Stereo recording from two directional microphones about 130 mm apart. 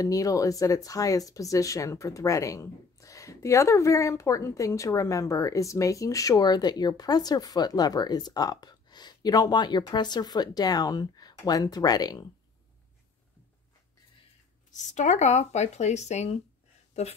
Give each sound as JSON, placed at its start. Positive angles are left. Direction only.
{"t": 0.0, "sound": "speech", "side_deg": 25}
{"t": 14.7, "sound": "speech", "side_deg": 70}